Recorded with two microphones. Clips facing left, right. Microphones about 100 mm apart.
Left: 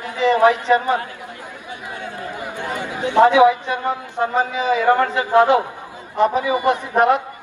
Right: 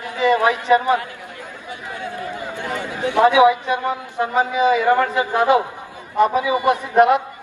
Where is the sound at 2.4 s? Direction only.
15° left (ahead or behind).